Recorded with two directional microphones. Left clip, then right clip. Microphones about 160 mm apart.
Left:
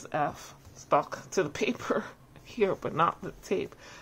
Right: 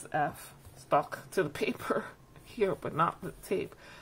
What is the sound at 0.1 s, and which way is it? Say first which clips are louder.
Speech: left 1 dB; 25° left (ahead or behind).